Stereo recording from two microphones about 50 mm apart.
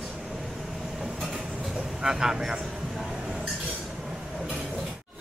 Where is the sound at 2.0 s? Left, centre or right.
Centre.